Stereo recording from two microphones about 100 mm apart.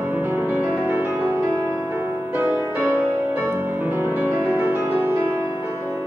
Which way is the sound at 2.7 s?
20° right (ahead or behind).